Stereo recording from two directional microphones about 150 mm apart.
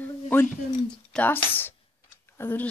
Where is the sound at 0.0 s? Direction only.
10° left (ahead or behind).